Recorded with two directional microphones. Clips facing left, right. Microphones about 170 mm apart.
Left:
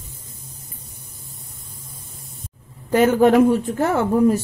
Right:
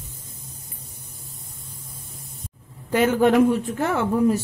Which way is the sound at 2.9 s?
45° left (ahead or behind).